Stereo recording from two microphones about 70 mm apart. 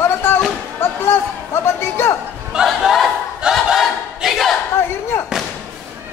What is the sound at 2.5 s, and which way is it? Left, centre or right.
Battle cry, centre.